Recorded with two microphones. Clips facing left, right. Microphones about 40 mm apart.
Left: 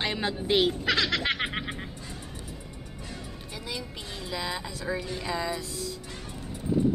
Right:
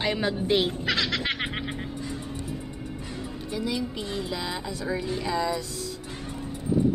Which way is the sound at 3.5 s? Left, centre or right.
Centre.